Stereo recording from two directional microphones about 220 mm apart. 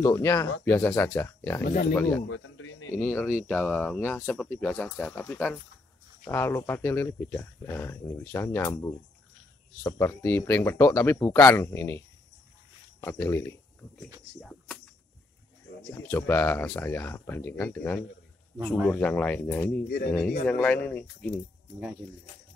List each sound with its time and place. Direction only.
0.0 s speech: 15° left (ahead or behind)
1.6 s speech: 40° left (ahead or behind)
2.0 s speech: 10° left (ahead or behind)
2.2 s a sound: 60° left (ahead or behind)
3.0 s speech: 10° left (ahead or behind)
13.0 s speech: 10° left (ahead or behind)
14.4 s insect: 5° left (ahead or behind)
15.9 s speech: 10° left (ahead or behind)